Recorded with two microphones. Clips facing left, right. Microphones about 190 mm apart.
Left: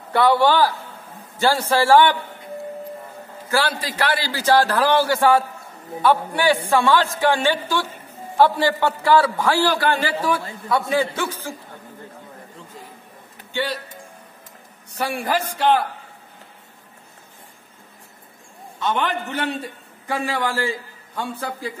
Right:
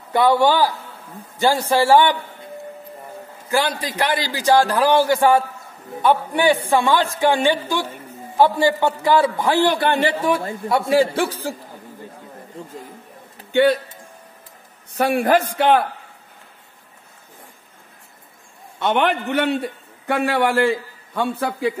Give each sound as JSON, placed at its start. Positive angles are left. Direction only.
{"t": 0.1, "sound": "a man's voice", "side_deg": -15}
{"t": 3.4, "sound": "a man's voice", "side_deg": -15}
{"t": 13.5, "sound": "speech", "side_deg": -55}
{"t": 15.0, "sound": "a man's voice", "side_deg": -55}
{"t": 18.8, "sound": "a man's voice", "side_deg": -65}